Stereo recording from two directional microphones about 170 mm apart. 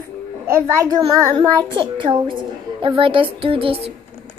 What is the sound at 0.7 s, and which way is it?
A child's voice, 20° right (ahead or behind).